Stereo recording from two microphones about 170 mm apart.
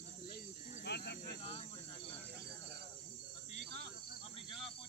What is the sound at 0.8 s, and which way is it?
Cricket, 70° left (ahead or behind).